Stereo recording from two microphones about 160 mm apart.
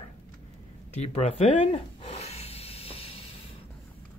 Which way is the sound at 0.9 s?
45° left (ahead or behind).